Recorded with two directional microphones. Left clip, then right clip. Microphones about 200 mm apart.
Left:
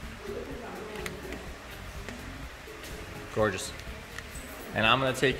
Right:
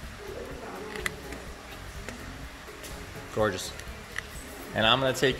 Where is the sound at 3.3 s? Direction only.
5° left (ahead or behind).